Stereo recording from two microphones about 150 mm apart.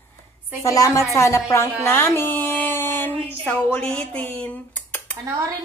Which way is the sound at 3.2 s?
10° left (ahead or behind).